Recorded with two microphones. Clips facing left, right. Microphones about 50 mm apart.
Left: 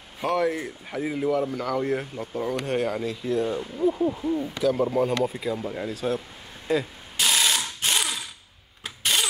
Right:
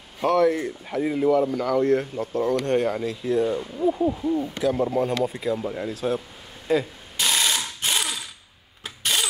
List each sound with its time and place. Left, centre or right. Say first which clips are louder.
0.2 s speech: right 5 dB; centre
6.7 s ratchet: right 2 dB; centre
8.8 s vehicle: even; centre